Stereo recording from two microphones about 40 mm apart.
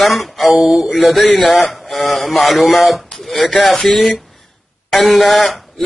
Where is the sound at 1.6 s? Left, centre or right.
Centre.